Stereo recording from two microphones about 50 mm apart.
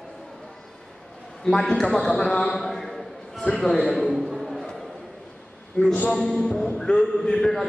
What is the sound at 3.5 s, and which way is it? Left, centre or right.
Speech, centre.